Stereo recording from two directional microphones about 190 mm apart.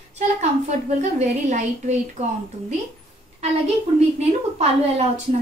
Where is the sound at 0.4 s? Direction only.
35° right (ahead or behind).